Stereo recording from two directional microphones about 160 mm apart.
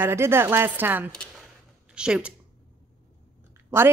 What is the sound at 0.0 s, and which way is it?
Speech, 15° right (ahead or behind).